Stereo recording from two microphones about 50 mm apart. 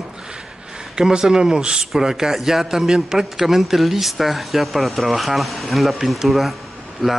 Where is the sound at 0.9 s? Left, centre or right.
Centre.